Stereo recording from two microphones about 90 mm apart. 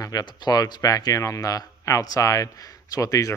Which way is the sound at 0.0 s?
50° left (ahead or behind).